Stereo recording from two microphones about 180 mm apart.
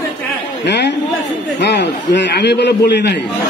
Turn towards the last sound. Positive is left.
turn(degrees=70)  # may be behind; listen again after turning